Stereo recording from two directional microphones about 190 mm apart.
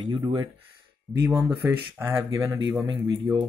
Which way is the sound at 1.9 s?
15° right (ahead or behind).